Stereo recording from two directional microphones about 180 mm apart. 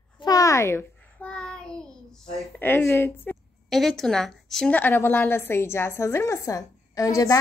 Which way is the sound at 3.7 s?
Centre (ahead or behind).